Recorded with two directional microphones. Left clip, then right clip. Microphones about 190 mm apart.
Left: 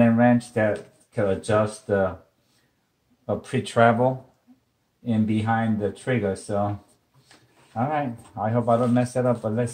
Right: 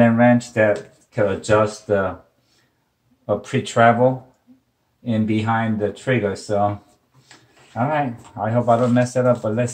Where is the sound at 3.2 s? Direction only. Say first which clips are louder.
Right 5 dB; 30° left (ahead or behind).